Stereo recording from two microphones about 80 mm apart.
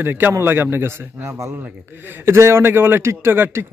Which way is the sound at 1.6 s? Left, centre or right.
Right.